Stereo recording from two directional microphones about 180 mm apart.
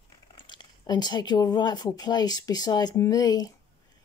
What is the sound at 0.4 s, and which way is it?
Speech, 25° left (ahead or behind).